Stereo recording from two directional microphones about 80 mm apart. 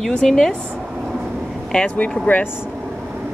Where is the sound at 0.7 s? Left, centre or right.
Centre.